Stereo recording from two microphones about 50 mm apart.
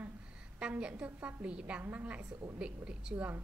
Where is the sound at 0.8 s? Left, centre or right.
Centre.